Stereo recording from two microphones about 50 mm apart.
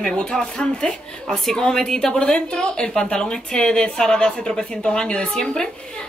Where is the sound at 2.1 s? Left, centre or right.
Left.